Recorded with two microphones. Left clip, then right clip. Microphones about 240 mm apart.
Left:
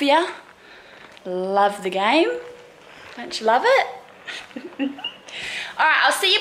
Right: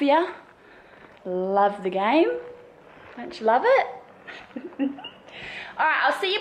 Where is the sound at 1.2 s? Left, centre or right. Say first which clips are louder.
Left 1 dB; right.